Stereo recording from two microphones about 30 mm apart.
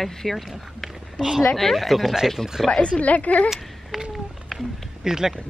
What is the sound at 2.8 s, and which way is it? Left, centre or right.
Speech, left.